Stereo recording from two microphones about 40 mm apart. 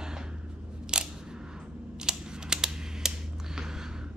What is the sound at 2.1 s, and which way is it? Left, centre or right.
Typing, centre.